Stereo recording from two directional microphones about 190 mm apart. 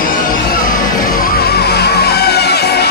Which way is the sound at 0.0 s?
50° left (ahead or behind).